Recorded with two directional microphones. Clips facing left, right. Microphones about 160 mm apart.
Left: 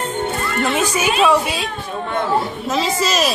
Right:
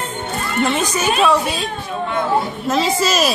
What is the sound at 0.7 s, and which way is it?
A woman's voice, 5° left (ahead or behind).